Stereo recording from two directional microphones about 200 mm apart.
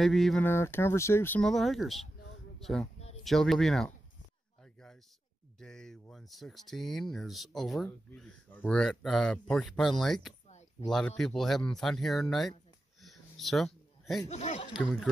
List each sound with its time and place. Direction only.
0.0 s speech: centre (ahead or behind)
5.6 s speech: 5° left (ahead or behind)
13.0 s a sound: centre (ahead or behind)
14.3 s speech: 35° left (ahead or behind)
14.7 s speech: 5° left (ahead or behind)